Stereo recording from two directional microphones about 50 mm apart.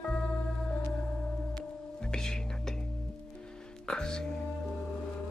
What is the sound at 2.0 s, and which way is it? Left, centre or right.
Music, centre.